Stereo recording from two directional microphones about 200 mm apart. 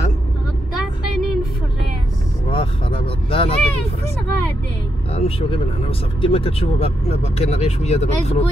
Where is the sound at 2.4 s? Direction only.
25° left (ahead or behind).